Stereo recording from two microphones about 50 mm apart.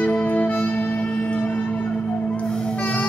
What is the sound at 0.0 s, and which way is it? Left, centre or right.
Music, left.